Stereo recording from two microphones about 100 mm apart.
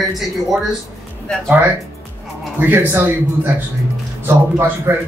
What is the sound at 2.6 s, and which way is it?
Speech, 15° right (ahead or behind).